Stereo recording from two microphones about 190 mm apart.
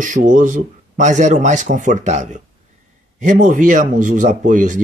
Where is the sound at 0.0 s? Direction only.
40° right (ahead or behind).